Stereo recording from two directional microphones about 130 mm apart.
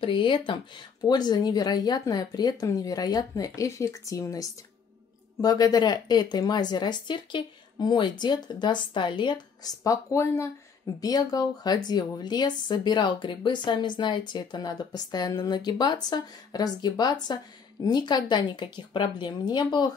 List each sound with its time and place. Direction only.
0.0 s a woman's voice: 40° left (ahead or behind)